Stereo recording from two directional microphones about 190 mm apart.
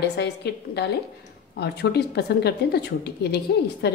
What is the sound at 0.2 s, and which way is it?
A woman's voice, 60° left (ahead or behind).